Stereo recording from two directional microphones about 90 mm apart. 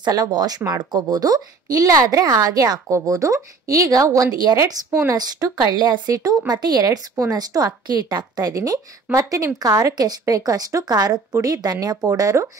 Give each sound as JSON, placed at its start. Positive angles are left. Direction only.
{"t": 0.0, "sound": "a woman's voice", "side_deg": -50}
{"t": 12.1, "sound": "a woman's voice", "side_deg": -35}